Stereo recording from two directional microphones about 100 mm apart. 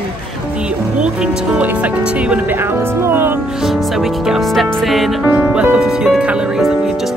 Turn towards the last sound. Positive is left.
turn(degrees=-10)  # may be behind; listen again after turning